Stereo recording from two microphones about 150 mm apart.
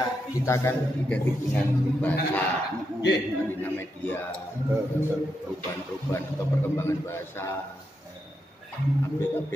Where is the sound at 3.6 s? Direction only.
15° left (ahead or behind).